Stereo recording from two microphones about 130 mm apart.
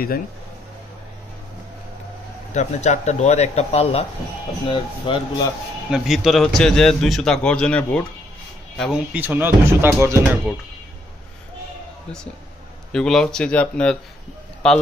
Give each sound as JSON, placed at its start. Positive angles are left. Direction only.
{"t": 2.5, "sound": "speech", "side_deg": 60}
{"t": 4.6, "sound": "speech", "side_deg": 40}
{"t": 5.9, "sound": "a man's voice", "side_deg": -5}
{"t": 9.1, "sound": "speech", "side_deg": -15}
{"t": 12.9, "sound": "speech", "side_deg": 5}